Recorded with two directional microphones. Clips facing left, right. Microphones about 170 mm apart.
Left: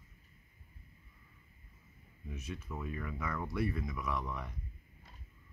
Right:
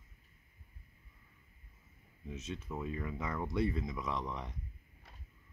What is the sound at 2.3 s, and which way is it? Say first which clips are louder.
Speech: right 2 dB; 25° right (ahead or behind).